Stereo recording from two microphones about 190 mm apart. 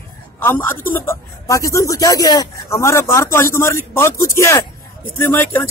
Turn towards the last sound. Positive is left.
turn(degrees=10)  # may be behind; listen again after turning